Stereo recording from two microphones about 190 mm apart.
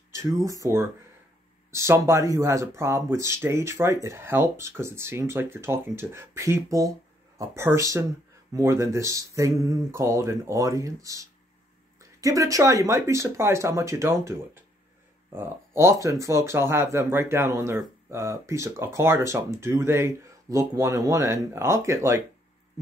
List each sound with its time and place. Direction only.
0.1 s a sound: 15° right (ahead or behind)
0.5 s speech: 15° right (ahead or behind)
15.3 s speech: 15° right (ahead or behind)